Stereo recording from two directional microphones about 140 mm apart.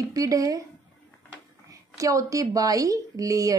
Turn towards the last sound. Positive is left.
turn(degrees=-25)  # may be behind; listen again after turning